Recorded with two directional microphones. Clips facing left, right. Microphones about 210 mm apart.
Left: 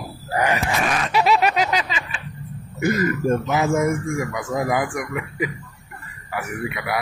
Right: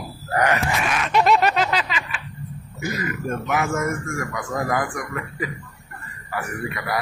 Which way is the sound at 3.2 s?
20° left (ahead or behind).